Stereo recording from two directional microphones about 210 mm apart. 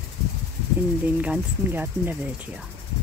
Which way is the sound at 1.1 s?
5° right (ahead or behind).